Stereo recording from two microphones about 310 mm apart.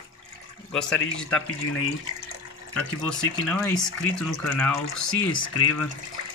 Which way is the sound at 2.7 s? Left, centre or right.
Centre.